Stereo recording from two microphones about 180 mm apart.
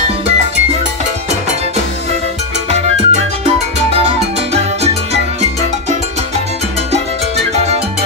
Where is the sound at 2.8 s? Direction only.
35° right (ahead or behind).